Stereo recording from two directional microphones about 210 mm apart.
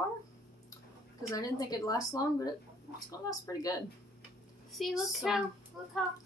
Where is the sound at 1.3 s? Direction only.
15° left (ahead or behind).